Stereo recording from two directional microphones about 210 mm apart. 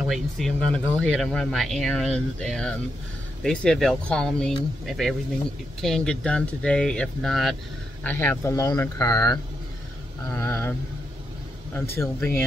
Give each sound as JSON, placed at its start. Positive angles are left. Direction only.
{"t": 0.0, "sound": "speech", "side_deg": 0}